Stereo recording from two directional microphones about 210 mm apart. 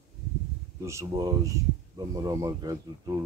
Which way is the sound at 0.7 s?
15° right (ahead or behind).